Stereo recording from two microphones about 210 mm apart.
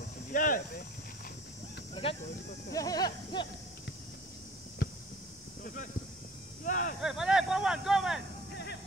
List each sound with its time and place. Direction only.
0.3 s speech: 40° left (ahead or behind)
2.0 s speech: 25° left (ahead or behind)
6.6 s speech: 40° left (ahead or behind)
7.0 s vehicle: centre (ahead or behind)